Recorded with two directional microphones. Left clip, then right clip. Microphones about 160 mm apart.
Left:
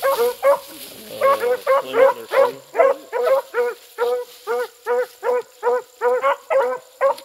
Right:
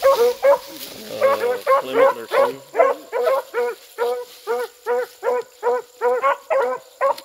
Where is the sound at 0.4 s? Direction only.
10° left (ahead or behind).